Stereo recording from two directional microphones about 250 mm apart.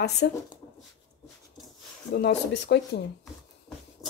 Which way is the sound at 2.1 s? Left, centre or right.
Left.